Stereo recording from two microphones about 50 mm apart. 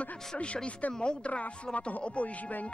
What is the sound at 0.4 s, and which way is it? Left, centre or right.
Speech, left.